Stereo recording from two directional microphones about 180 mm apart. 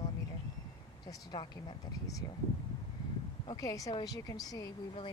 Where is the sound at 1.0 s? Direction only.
25° left (ahead or behind).